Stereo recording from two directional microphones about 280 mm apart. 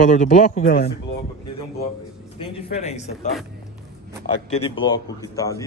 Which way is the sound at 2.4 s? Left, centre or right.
Left.